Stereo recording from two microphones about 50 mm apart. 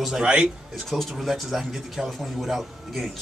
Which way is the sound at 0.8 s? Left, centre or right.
Centre.